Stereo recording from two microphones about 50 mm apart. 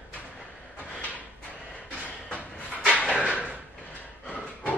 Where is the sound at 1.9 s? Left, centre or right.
Left.